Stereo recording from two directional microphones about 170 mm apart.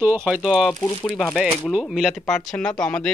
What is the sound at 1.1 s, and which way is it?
Speech, centre (ahead or behind).